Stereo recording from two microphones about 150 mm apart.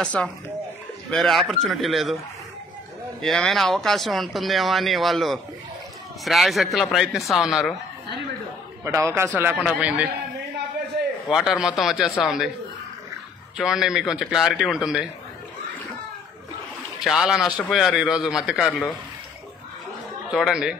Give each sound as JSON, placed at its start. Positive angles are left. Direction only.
{"t": 0.0, "sound": "speech", "side_deg": 5}
{"t": 3.2, "sound": "speech", "side_deg": 0}
{"t": 8.8, "sound": "a man's voice", "side_deg": -20}
{"t": 11.2, "sound": "speech", "side_deg": 0}
{"t": 13.6, "sound": "speech", "side_deg": -5}
{"t": 17.0, "sound": "speech", "side_deg": 0}
{"t": 20.2, "sound": "speech", "side_deg": -5}